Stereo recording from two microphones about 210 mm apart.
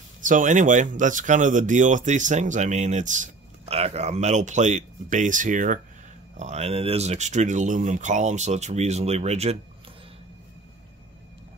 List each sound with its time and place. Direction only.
0.2 s speech: 40° right (ahead or behind)